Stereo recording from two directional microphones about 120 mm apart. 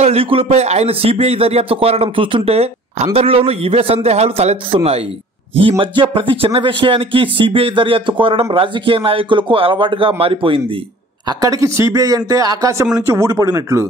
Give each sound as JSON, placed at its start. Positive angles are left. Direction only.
{"t": 0.0, "sound": "a man's voice", "side_deg": -55}
{"t": 11.2, "sound": "a man's voice", "side_deg": -30}